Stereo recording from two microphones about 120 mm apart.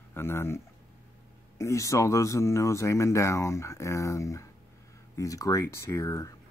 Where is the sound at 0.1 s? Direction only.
20° left (ahead or behind).